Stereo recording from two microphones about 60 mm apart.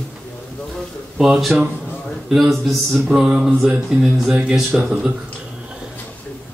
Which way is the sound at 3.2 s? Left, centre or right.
Centre.